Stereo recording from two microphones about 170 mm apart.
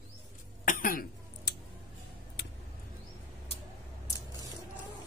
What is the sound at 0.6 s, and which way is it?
Cough, 55° left (ahead or behind).